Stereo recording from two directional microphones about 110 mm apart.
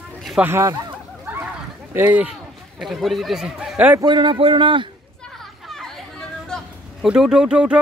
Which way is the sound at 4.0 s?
45° right (ahead or behind).